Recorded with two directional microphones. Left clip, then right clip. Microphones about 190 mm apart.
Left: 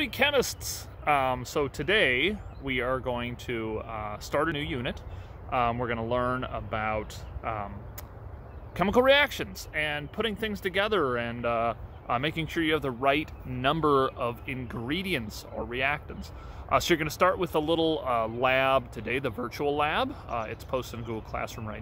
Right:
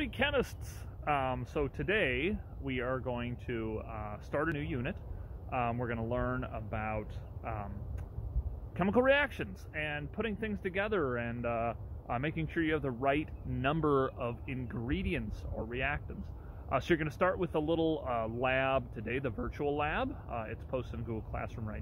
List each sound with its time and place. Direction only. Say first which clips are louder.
0.0 s speech: left 7 dB; 15° left (ahead or behind)
8.7 s speech: left 7 dB; 15° left (ahead or behind)